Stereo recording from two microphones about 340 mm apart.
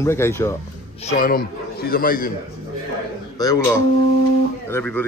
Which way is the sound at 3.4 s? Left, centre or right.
Centre.